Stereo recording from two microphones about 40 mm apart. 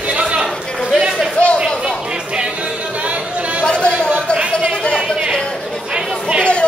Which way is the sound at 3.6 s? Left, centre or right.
Left.